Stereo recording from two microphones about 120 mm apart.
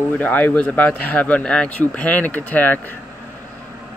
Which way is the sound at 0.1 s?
15° left (ahead or behind).